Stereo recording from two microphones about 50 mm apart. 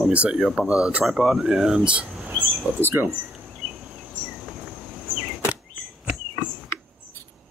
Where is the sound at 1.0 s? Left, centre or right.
Centre.